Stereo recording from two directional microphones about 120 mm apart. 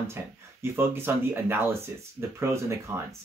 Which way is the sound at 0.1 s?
20° right (ahead or behind).